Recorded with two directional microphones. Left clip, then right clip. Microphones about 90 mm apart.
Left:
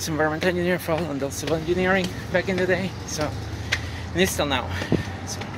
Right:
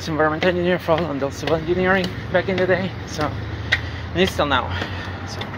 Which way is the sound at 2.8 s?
30° left (ahead or behind).